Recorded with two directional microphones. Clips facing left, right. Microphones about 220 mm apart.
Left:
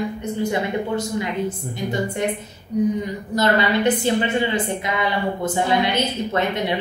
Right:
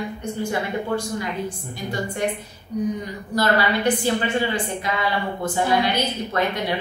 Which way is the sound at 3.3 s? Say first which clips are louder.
Left 2 dB; 20° left (ahead or behind).